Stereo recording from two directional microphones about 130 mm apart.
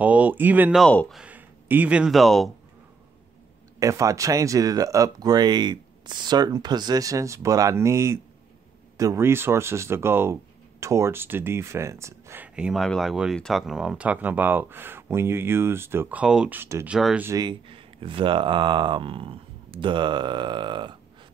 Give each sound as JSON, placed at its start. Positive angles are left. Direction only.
{"t": 0.0, "sound": "speech", "side_deg": -10}
{"t": 0.7, "sound": "speech", "side_deg": 5}
{"t": 1.2, "sound": "speech", "side_deg": -15}
{"t": 3.8, "sound": "speech", "side_deg": -25}
{"t": 12.5, "sound": "speech", "side_deg": -5}
{"t": 16.5, "sound": "speech", "side_deg": -20}
{"t": 16.8, "sound": "speech", "side_deg": -5}
{"t": 17.3, "sound": "speech", "side_deg": -35}